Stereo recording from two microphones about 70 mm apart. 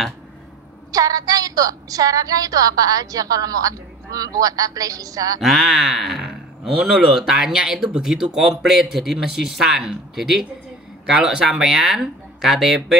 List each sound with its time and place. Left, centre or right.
0.9 s a woman's voice: right
5.4 s speech: centre